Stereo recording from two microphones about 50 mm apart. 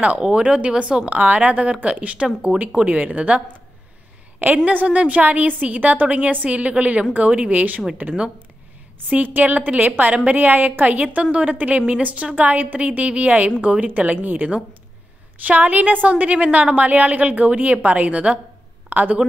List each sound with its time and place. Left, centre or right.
0.2 s speech: right
4.6 s a woman's voice: right
9.1 s a woman's voice: right